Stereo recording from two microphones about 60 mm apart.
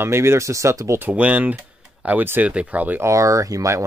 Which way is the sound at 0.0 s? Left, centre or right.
Right.